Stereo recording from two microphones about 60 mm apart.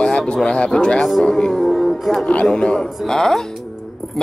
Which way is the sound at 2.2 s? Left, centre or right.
Left.